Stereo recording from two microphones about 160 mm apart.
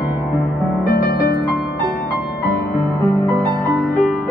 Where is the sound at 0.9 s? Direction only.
75° left (ahead or behind).